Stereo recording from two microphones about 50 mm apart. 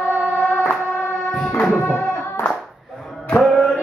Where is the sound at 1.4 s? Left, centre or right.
Centre.